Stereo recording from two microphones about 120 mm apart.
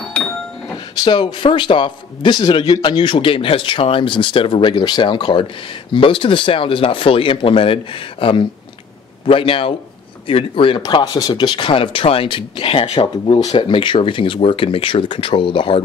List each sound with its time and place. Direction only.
0.1 s a sound: 10° left (ahead or behind)
1.0 s a man's voice: 40° left (ahead or behind); by 13.6 s 60° left (ahead or behind)
13.6 s a man's voice: 45° left (ahead or behind)